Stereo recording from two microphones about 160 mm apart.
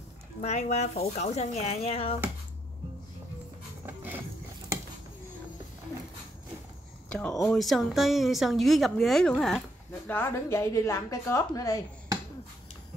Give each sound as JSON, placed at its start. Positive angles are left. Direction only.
{"t": 0.4, "sound": "speech", "side_deg": 45}
{"t": 3.8, "sound": "a sound", "side_deg": -10}
{"t": 7.1, "sound": "speech", "side_deg": 10}
{"t": 10.0, "sound": "a woman's voice", "side_deg": 15}